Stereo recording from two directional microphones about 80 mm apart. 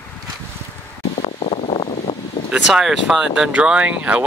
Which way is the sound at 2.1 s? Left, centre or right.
Left.